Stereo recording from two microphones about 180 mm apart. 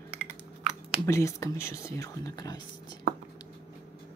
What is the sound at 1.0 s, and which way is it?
Speech, 15° left (ahead or behind).